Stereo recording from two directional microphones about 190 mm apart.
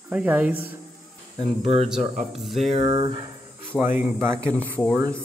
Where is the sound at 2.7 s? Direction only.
25° right (ahead or behind).